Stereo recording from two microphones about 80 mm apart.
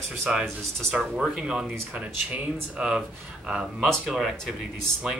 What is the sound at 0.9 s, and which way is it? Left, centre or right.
Speech, centre.